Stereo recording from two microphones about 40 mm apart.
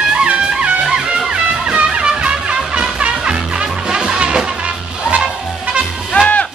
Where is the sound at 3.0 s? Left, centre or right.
Right.